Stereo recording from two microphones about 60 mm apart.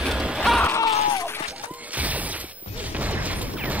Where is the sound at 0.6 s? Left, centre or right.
Left.